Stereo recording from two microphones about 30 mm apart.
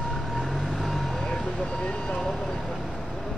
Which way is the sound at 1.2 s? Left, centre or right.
Centre.